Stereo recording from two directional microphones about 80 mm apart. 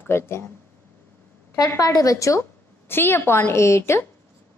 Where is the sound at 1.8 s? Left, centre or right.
Left.